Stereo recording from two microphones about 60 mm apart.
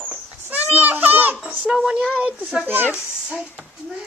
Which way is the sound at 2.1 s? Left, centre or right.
Right.